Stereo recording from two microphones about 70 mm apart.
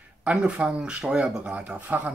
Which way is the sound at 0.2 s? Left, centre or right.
Centre.